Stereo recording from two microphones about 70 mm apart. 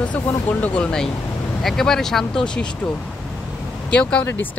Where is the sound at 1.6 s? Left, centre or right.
Centre.